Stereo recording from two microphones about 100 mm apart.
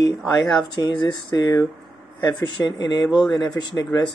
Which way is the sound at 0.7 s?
50° left (ahead or behind).